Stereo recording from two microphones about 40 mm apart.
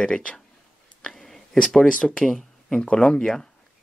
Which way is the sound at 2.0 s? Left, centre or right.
Centre.